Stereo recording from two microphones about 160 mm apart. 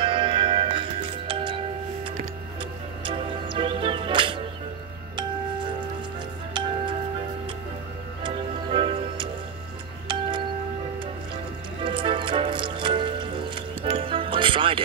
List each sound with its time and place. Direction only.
0.0 s music: 30° right (ahead or behind)
3.1 s music: 30° right (ahead or behind)
6.5 s music: 30° right (ahead or behind)
8.2 s music: 30° right (ahead or behind)
11.8 s music: 30° right (ahead or behind)